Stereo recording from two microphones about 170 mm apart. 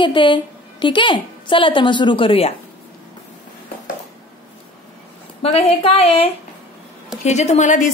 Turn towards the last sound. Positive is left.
turn(degrees=50)  # may be behind; listen again after turning